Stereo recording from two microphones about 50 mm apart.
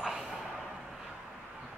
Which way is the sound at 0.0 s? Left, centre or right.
Centre.